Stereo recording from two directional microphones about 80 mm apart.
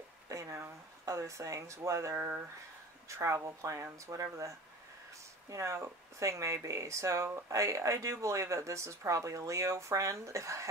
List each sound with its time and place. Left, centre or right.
0.3 s a sound: right
1.0 s speech: right
2.1 s speech: right
3.1 s speech: right